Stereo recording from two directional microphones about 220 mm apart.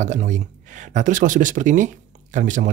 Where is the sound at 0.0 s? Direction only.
35° right (ahead or behind).